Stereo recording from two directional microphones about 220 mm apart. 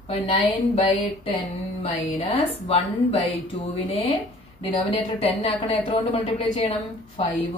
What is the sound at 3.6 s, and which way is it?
Speech, 25° left (ahead or behind).